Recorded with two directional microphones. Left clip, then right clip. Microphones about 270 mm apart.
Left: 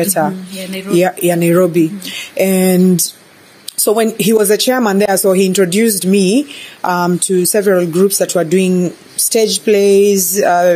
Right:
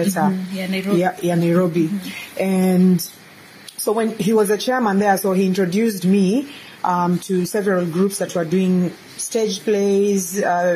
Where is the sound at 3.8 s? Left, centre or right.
Left.